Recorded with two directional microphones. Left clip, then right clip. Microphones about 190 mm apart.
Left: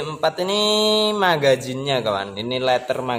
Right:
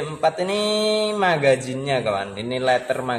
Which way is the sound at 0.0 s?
15° left (ahead or behind).